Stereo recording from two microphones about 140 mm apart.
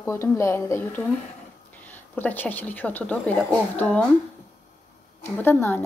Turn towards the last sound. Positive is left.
turn(degrees=15)  # may be behind; listen again after turning